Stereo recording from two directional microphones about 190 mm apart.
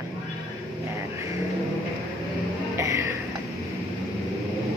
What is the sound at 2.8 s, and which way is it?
Music, 15° right (ahead or behind).